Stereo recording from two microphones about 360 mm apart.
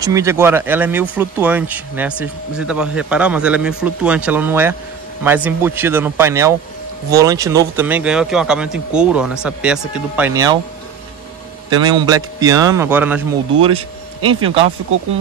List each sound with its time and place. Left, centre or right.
0.0 s speech: centre
11.7 s speech: centre